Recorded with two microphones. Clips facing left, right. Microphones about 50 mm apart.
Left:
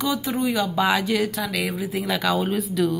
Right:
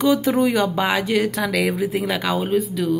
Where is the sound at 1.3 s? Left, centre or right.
Right.